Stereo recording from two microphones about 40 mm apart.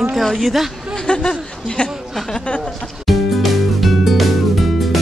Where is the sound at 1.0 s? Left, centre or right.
Left.